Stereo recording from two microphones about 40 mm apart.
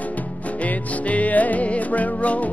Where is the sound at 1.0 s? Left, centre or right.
Left.